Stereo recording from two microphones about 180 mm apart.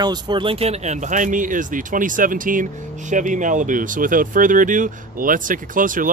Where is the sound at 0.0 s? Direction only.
25° right (ahead or behind).